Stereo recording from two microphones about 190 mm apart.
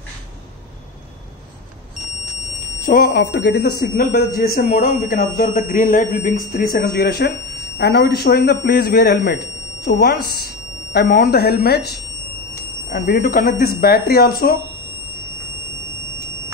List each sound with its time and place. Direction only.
2.8 s speech: 50° left (ahead or behind)